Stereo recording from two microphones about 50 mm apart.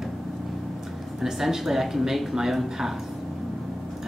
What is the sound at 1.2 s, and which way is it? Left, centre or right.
Speech, centre.